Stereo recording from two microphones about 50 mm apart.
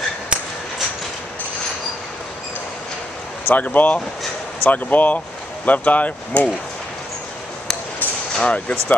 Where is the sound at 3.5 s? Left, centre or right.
Left.